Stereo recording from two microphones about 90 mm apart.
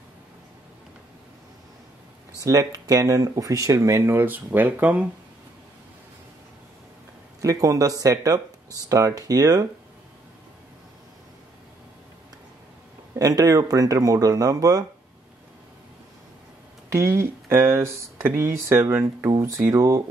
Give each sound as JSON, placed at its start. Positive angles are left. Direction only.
{"t": 2.4, "sound": "speech", "side_deg": -40}
{"t": 4.1, "sound": "speech", "side_deg": -20}
{"t": 7.4, "sound": "speech", "side_deg": -40}
{"t": 13.2, "sound": "speech", "side_deg": -45}
{"t": 16.9, "sound": "speech", "side_deg": -25}